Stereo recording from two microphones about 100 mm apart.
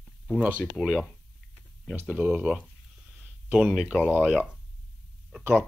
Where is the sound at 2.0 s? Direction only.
15° right (ahead or behind).